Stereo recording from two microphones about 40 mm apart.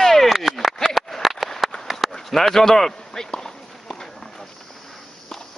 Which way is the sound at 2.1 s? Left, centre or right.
Centre.